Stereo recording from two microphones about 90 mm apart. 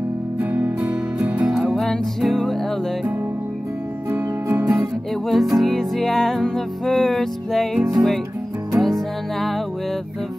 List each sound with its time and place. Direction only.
0.4 s music: 20° right (ahead or behind)
1.5 s music: centre (ahead or behind)
4.1 s music: 20° right (ahead or behind)
5.3 s music: centre (ahead or behind)